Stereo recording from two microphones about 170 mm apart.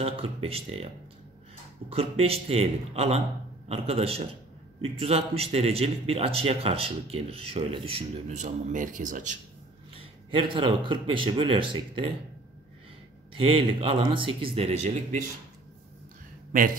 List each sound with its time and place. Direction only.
0.0 s speech: 35° right (ahead or behind)
10.3 s speech: 30° right (ahead or behind)
13.3 s speech: 30° right (ahead or behind)